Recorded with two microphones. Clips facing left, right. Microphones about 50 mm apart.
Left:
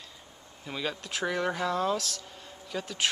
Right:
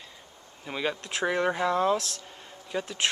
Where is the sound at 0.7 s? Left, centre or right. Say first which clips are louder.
Right 3 dB; centre.